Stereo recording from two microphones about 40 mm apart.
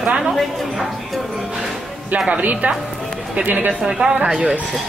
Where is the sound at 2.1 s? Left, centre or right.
Right.